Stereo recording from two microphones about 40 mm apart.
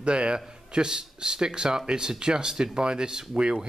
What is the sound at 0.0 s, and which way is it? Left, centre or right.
Speech, right.